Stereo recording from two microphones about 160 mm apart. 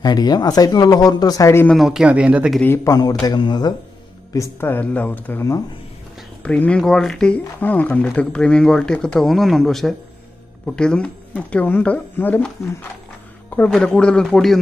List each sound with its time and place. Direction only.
0.0 s a man's voice: 25° left (ahead or behind)
1.8 s speech: 5° right (ahead or behind)
2.6 s a man's voice: 15° left (ahead or behind)
4.3 s speech: 15° left (ahead or behind)
13.7 s speech: 5° left (ahead or behind)